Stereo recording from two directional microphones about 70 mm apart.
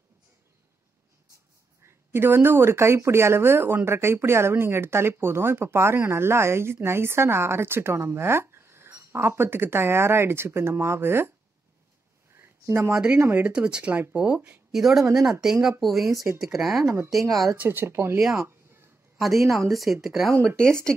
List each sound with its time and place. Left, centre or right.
1.9 s speech: right
12.4 s a sound: right
12.9 s speech: centre
14.7 s a woman's voice: centre
16.8 s speech: right
17.1 s a woman's voice: centre
17.6 s speech: right
18.4 s a sound: right
19.7 s a woman's voice: centre
20.3 s speech: right